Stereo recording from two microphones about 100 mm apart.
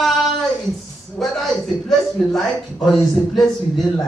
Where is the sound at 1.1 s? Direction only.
Centre (ahead or behind).